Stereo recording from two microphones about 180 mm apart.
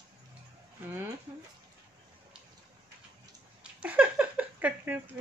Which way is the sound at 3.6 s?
5° right (ahead or behind).